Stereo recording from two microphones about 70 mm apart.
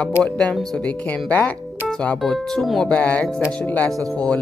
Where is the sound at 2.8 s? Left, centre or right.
Centre.